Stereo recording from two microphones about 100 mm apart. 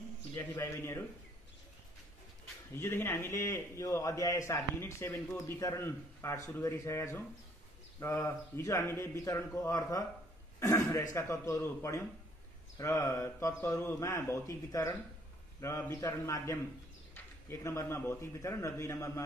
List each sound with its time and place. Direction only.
0.4 s a man's voice: 25° left (ahead or behind)
2.7 s a man's voice: 25° left (ahead or behind)